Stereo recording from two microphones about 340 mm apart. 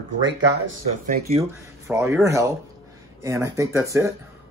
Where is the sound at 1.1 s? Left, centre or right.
Centre.